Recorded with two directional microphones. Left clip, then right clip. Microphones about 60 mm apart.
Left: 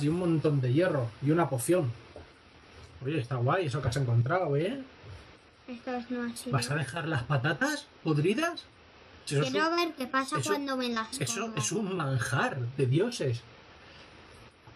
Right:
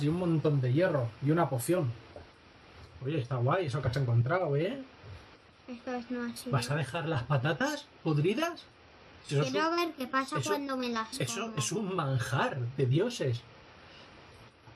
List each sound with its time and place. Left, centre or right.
0.0 s speech: centre
3.1 s speech: centre
5.7 s speech: centre
6.5 s speech: centre
11.2 s speech: centre